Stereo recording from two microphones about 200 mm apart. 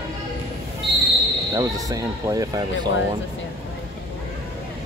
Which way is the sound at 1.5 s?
15° right (ahead or behind).